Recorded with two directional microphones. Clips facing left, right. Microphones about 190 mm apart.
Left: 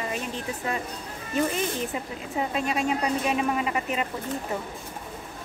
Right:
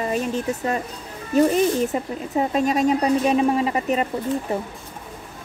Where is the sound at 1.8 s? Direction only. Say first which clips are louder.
Right 8 dB; 40° right (ahead or behind).